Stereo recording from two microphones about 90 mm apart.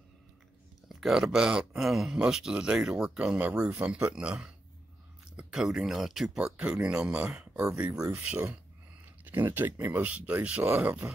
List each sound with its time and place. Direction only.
0.8 s speech: 5° right (ahead or behind)